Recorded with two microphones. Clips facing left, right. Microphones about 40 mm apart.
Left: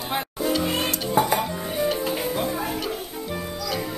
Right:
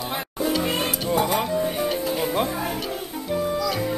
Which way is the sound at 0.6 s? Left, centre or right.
Centre.